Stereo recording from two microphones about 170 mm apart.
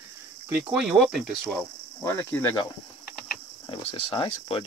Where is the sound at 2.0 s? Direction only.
15° left (ahead or behind).